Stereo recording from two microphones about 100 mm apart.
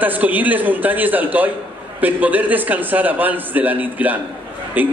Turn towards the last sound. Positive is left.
turn(degrees=-15)  # may be behind; listen again after turning